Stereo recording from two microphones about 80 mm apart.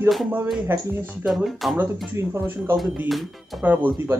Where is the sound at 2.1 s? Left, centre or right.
Right.